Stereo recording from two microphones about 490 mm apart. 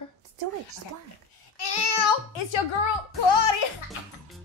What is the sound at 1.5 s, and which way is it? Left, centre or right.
Speech, left.